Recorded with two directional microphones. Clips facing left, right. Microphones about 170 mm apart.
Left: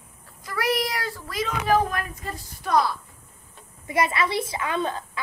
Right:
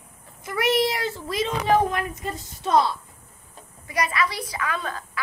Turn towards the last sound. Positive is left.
turn(degrees=25)  # may be behind; listen again after turning